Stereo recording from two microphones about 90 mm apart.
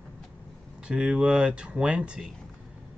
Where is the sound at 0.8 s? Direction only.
10° right (ahead or behind).